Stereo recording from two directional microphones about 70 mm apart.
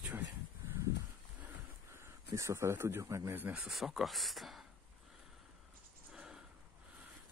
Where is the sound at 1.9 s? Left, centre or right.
Right.